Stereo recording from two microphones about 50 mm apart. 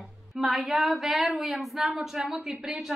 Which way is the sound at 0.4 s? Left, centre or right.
Centre.